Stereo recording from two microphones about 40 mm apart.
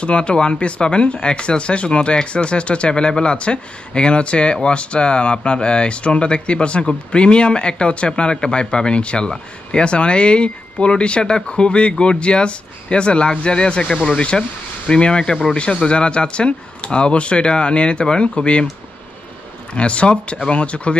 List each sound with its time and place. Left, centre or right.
0.0 s speech: left
19.7 s speech: left